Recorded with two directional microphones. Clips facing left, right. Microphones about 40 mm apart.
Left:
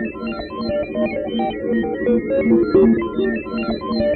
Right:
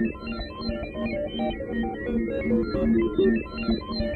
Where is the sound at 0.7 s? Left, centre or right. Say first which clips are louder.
Left 10 dB; left.